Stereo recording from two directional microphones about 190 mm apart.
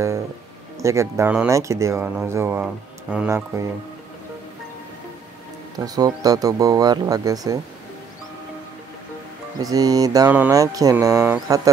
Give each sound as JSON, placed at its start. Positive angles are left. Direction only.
{"t": 0.7, "sound": "speech", "side_deg": -15}
{"t": 5.9, "sound": "speech", "side_deg": -20}
{"t": 9.6, "sound": "speech", "side_deg": -20}